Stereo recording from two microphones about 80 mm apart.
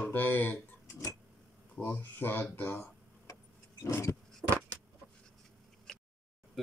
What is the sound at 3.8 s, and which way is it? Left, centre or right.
Speech, left.